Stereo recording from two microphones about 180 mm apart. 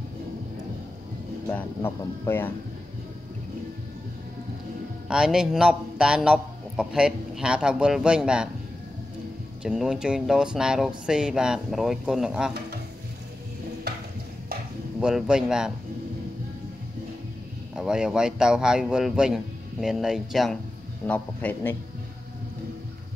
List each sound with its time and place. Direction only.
1.5 s speech: 10° left (ahead or behind)
5.0 s a man's voice: 5° right (ahead or behind)
9.6 s a man's voice: 5° right (ahead or behind)
13.9 s a sound: 65° right (ahead or behind)
15.0 s a man's voice: 5° right (ahead or behind)
17.7 s a man's voice: 5° right (ahead or behind)